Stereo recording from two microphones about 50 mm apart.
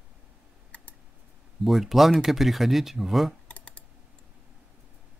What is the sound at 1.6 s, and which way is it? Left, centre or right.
Speech, centre.